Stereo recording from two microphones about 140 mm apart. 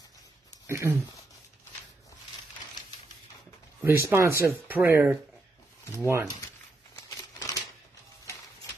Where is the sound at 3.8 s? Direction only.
20° right (ahead or behind).